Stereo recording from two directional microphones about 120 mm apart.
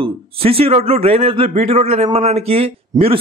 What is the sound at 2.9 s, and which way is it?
Speech, 30° right (ahead or behind).